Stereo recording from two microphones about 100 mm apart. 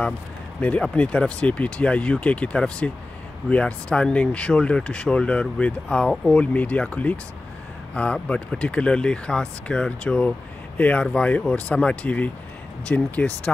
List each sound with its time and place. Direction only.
0.6 s speech: 15° left (ahead or behind)